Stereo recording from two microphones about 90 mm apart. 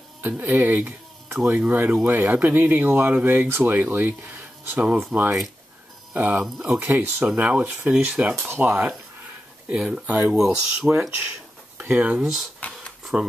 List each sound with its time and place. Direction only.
0.2 s speech: 20° right (ahead or behind)
6.1 s speech: 20° right (ahead or behind)
8.4 s speech: 25° right (ahead or behind)
9.7 s speech: 10° right (ahead or behind)
11.8 s speech: 20° right (ahead or behind)
12.2 s speech: 5° right (ahead or behind)
12.5 s a sound: 15° left (ahead or behind)
13.0 s a sound: 5° right (ahead or behind)